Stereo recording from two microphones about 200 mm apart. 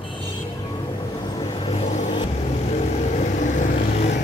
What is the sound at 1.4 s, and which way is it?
Vehicle, 25° left (ahead or behind).